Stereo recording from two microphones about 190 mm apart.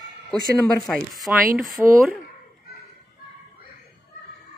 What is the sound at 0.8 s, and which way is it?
Speech, centre (ahead or behind).